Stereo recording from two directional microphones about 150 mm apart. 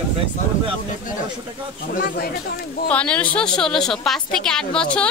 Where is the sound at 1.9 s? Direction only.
75° left (ahead or behind).